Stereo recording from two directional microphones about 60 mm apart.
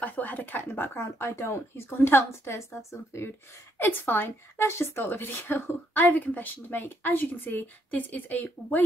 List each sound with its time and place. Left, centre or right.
0.0 s speech: left
3.7 s a woman's voice: left